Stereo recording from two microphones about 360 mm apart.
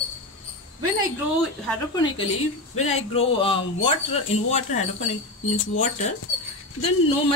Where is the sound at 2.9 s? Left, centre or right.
Centre.